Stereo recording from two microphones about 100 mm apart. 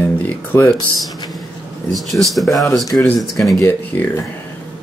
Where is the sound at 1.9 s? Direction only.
Centre (ahead or behind).